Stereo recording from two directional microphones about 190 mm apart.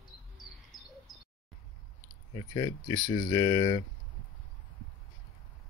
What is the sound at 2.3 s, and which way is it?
Speech, 20° left (ahead or behind).